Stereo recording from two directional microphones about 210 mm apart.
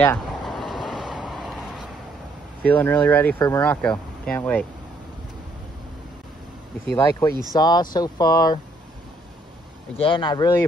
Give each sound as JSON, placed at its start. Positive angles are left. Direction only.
{"t": 0.0, "sound": "vehicle", "side_deg": 5}
{"t": 2.6, "sound": "speech", "side_deg": 10}
{"t": 7.0, "sound": "speech", "side_deg": 15}
{"t": 9.9, "sound": "speech", "side_deg": 25}